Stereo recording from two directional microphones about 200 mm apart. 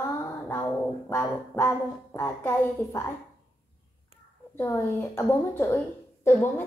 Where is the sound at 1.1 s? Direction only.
15° left (ahead or behind).